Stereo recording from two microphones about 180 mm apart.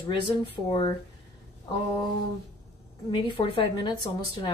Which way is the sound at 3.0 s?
25° left (ahead or behind).